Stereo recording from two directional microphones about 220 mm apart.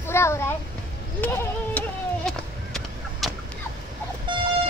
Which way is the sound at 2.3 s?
Centre (ahead or behind).